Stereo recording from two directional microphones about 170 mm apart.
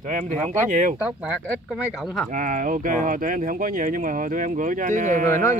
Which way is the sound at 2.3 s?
50° right (ahead or behind).